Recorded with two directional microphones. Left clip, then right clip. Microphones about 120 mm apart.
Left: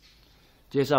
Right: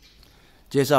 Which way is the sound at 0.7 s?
65° right (ahead or behind).